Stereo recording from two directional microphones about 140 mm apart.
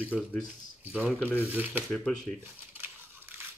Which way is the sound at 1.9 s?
5° left (ahead or behind).